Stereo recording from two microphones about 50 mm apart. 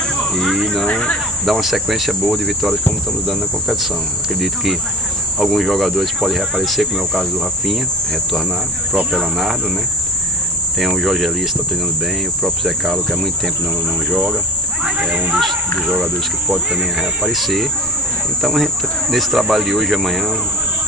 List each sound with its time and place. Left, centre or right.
0.4 s cricket: centre
5.4 s cricket: centre
9.1 s speech: centre
10.9 s cricket: centre
12.4 s cricket: centre
15.0 s speech: centre
16.4 s speech: centre
17.4 s cricket: centre